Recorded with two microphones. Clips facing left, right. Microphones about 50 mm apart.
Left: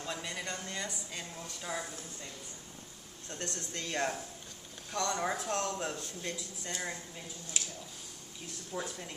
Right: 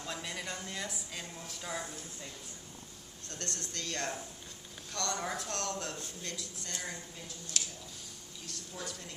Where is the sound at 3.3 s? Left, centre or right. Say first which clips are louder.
Left 2 dB; centre.